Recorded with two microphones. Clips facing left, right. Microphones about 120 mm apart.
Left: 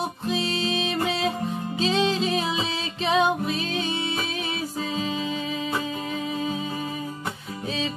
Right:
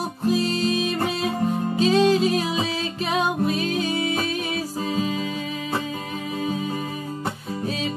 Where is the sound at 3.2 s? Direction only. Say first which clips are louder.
Right 1 dB; 5° right (ahead or behind).